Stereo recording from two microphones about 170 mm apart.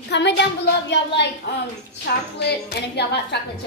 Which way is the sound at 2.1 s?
75° left (ahead or behind).